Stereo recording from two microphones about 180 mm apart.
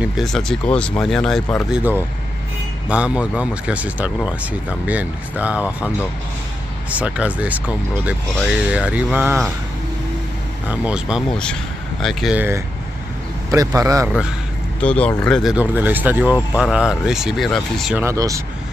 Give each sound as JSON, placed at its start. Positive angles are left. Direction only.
{"t": 0.0, "sound": "speech", "side_deg": 0}
{"t": 2.9, "sound": "speech", "side_deg": -5}
{"t": 6.9, "sound": "speech", "side_deg": -10}
{"t": 10.7, "sound": "speech", "side_deg": -5}
{"t": 12.4, "sound": "speech", "side_deg": -15}
{"t": 14.8, "sound": "speech", "side_deg": 5}
{"t": 17.9, "sound": "speech", "side_deg": -15}